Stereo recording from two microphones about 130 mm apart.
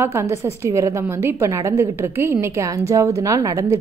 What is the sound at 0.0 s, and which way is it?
A woman's voice, 20° right (ahead or behind).